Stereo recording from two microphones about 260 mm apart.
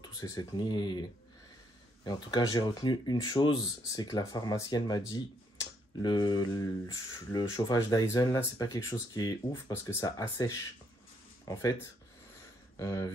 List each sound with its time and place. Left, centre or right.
0.2 s speech: centre
2.0 s speech: centre